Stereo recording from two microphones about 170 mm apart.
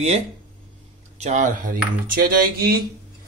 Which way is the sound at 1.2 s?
45° right (ahead or behind).